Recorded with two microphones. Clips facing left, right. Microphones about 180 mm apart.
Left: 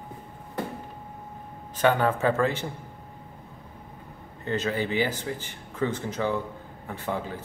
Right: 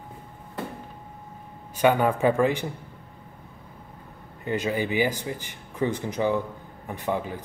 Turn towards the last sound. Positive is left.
turn(degrees=-15)  # may be behind; listen again after turning